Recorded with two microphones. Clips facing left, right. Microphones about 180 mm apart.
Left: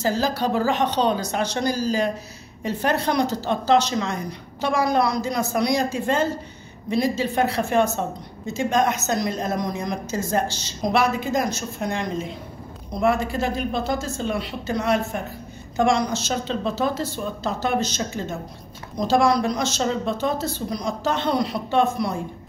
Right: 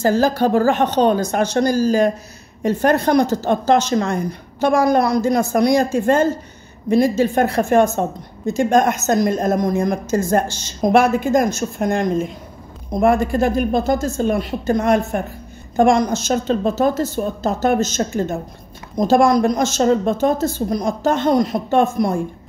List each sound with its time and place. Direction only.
0.0 s a woman's voice: 50° right (ahead or behind)